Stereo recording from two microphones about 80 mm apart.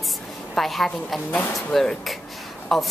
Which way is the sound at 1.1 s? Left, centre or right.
Left.